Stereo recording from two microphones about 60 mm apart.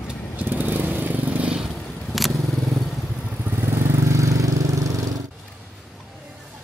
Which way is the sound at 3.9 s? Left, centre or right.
Right.